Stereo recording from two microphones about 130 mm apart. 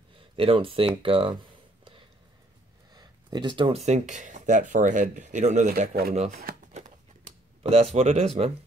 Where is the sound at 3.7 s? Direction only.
60° right (ahead or behind).